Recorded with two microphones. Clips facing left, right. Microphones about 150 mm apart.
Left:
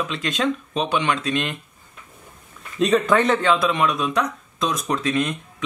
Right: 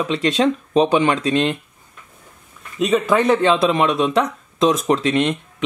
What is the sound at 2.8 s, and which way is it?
Speech, 5° right (ahead or behind).